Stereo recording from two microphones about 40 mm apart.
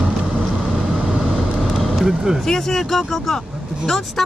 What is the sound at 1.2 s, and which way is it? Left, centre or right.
Vehicle, centre.